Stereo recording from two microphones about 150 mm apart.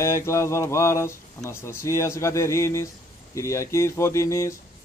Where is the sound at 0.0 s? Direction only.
20° left (ahead or behind).